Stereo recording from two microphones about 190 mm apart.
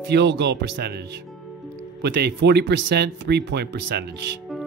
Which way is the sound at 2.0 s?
60° right (ahead or behind).